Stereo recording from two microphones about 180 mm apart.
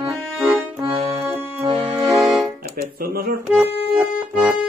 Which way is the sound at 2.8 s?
55° right (ahead or behind).